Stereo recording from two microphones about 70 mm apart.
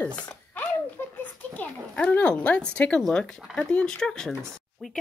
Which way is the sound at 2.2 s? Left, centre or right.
Centre.